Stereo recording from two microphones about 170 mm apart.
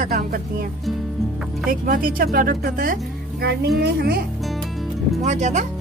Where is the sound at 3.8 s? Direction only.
70° right (ahead or behind).